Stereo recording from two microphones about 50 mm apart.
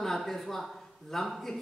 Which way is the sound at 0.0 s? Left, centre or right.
Centre.